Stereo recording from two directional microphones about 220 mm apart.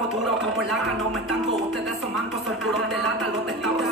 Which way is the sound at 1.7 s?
Centre (ahead or behind).